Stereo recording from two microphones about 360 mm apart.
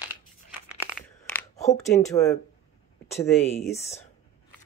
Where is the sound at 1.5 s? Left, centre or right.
Centre.